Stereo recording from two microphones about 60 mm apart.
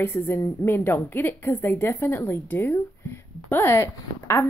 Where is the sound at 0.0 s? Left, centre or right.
Left.